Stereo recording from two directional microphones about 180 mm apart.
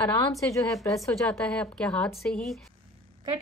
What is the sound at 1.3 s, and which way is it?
Speech, 5° left (ahead or behind).